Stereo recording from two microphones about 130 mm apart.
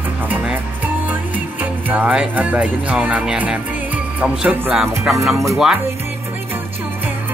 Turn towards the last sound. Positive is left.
turn(degrees=-5)  # may be behind; listen again after turning